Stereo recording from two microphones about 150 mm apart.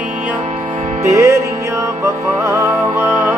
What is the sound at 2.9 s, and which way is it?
Music, 10° right (ahead or behind).